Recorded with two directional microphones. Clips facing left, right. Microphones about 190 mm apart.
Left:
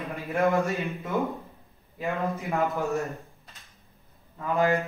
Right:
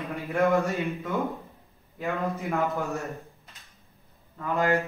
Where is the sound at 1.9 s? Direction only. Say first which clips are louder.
Even; 15° left (ahead or behind).